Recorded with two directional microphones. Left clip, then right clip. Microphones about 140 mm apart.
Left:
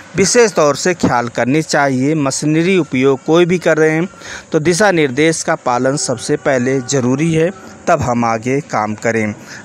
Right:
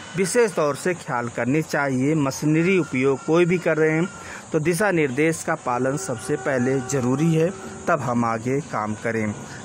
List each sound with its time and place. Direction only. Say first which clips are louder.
0.1 s speech: left 9 dB; 20° left (ahead or behind)